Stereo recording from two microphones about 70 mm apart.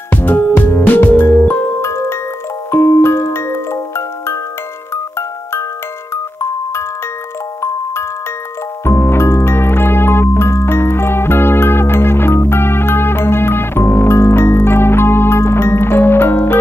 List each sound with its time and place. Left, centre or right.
0.1 s music: left
7.6 s music: left